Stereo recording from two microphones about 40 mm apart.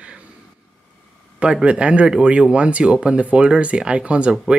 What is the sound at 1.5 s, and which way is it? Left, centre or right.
Speech, right.